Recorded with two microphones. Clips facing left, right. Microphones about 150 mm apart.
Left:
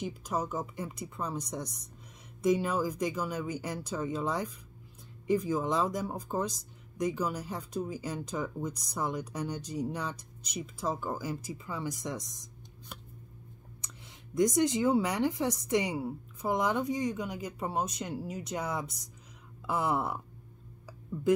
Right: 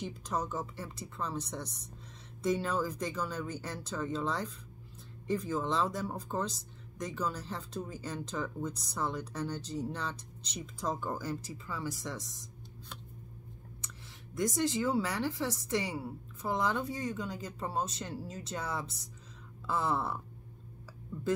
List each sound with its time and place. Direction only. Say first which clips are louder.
0.0 s speech: left 2 dB; 10° left (ahead or behind)
13.7 s speech: right 1 dB; 20° left (ahead or behind)